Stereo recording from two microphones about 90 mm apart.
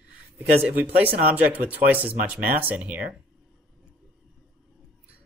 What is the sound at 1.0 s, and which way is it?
Speech, 20° right (ahead or behind).